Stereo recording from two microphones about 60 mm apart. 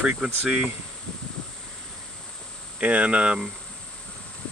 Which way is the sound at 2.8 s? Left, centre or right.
Right.